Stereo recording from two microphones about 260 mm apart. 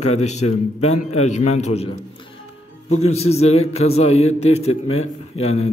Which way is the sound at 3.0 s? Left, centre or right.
Left.